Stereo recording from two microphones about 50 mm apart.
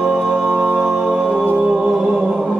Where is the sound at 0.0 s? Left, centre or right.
Centre.